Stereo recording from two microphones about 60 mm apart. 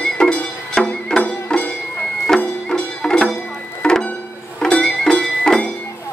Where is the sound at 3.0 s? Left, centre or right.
Centre.